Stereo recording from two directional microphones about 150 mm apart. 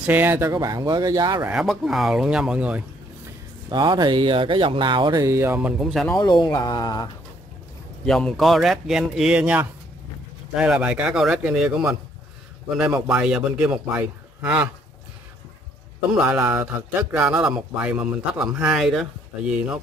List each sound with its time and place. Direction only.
0.0 s speech: 10° right (ahead or behind); by 1.4 s 25° right (ahead or behind)
1.5 s speech: centre (ahead or behind)
3.7 s speech: 30° right (ahead or behind); by 5.9 s 10° right (ahead or behind)
6.0 s speech: 25° left (ahead or behind)
8.0 s a man's voice: 5° left (ahead or behind)
16.2 s a man's voice: 15° right (ahead or behind)